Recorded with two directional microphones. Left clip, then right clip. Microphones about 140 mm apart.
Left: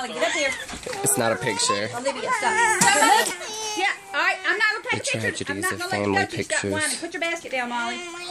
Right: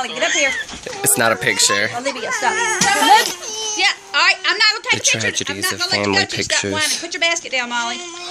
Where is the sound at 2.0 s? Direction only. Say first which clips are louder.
Right 4 dB; 45° right (ahead or behind).